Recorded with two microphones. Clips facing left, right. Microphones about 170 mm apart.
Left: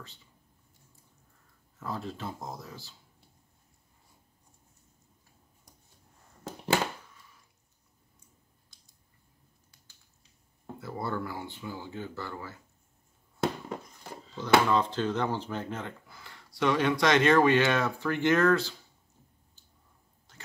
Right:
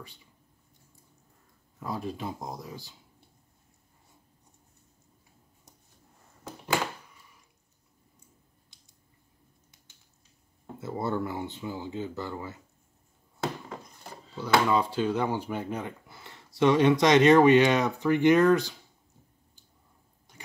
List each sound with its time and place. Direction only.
1.8 s speech: 15° right (ahead or behind)
10.8 s speech: 20° right (ahead or behind)
14.4 s speech: 10° right (ahead or behind)
20.3 s drip: 15° right (ahead or behind)